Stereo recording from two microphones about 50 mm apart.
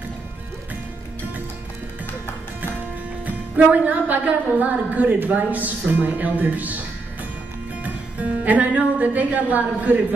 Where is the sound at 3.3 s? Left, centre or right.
Right.